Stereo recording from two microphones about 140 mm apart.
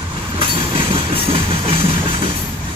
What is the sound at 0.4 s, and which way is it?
Train, 40° right (ahead or behind).